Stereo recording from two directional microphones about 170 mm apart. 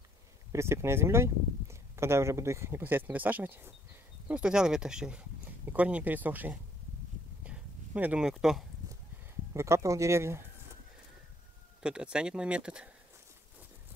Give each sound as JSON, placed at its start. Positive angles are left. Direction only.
{"t": 0.5, "sound": "speech", "side_deg": -15}
{"t": 7.4, "sound": "a sound", "side_deg": -10}
{"t": 9.5, "sound": "speech", "side_deg": -15}
{"t": 11.8, "sound": "speech", "side_deg": -5}